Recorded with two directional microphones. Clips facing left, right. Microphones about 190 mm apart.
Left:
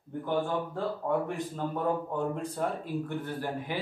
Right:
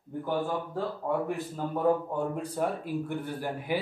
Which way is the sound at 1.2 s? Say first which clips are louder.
Right 1 dB; 5° right (ahead or behind).